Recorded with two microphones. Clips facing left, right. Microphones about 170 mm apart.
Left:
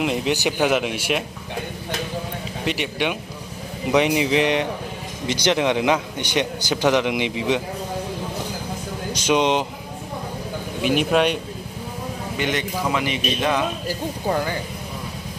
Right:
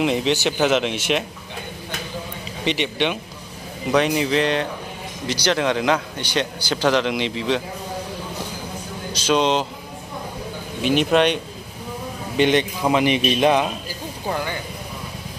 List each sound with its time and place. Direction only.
0.0 s a man's voice: 5° left (ahead or behind)
2.6 s a man's voice: 5° left (ahead or behind)
9.1 s a man's voice: 15° left (ahead or behind)
10.8 s speech: 5° left (ahead or behind)
12.4 s a man's voice: 20° right (ahead or behind)